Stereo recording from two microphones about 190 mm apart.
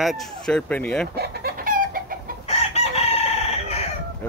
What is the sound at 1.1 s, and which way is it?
Chicken, 55° right (ahead or behind).